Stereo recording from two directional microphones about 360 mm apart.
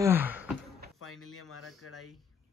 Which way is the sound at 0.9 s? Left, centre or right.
Left.